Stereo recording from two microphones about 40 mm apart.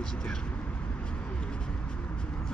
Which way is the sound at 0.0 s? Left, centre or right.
Centre.